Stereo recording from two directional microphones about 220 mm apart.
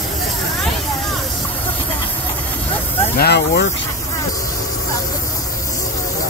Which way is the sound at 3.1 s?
45° left (ahead or behind).